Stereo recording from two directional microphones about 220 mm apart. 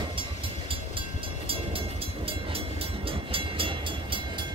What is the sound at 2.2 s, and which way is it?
Train, 25° right (ahead or behind).